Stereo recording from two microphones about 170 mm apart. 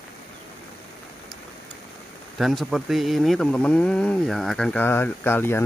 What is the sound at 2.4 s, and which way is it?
Speech, centre (ahead or behind).